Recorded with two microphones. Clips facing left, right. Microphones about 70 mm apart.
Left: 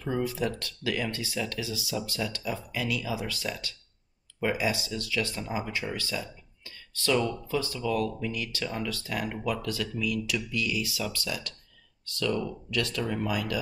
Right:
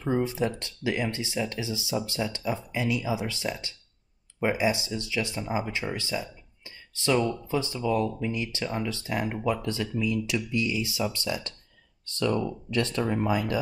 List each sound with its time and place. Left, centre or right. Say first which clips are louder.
0.0 s speech: right 3 dB; right